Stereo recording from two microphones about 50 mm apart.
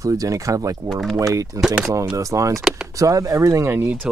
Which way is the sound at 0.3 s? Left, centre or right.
Right.